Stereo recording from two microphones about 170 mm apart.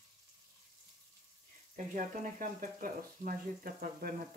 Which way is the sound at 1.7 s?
50° right (ahead or behind).